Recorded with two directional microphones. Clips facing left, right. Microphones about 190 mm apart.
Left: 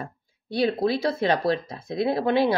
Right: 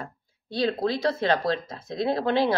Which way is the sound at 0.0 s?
15° left (ahead or behind).